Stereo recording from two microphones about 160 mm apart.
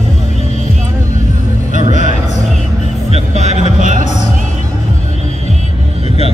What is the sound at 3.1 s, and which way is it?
Music, 45° right (ahead or behind).